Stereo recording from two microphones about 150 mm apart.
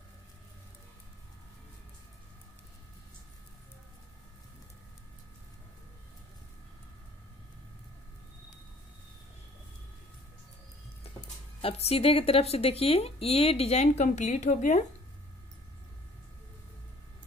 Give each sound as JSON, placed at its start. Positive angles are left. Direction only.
{"t": 11.6, "sound": "speech", "side_deg": 40}